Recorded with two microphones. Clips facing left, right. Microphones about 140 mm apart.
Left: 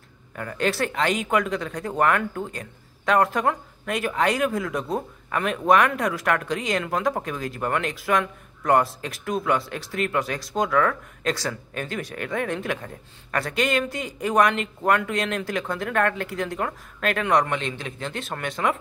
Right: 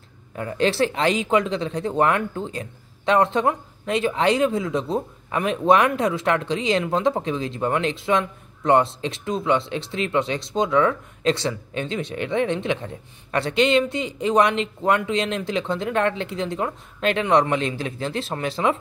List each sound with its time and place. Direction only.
0.4 s speech: 25° right (ahead or behind)